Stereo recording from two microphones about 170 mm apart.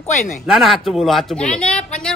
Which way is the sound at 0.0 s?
45° left (ahead or behind).